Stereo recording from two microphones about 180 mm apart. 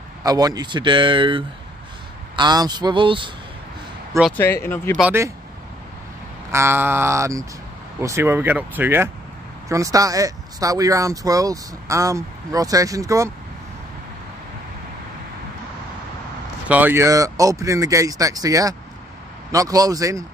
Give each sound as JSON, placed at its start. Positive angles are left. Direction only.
{"t": 0.2, "sound": "speech", "side_deg": -20}
{"t": 4.4, "sound": "speech", "side_deg": 15}
{"t": 6.5, "sound": "speech", "side_deg": -15}
{"t": 16.6, "sound": "speech", "side_deg": -10}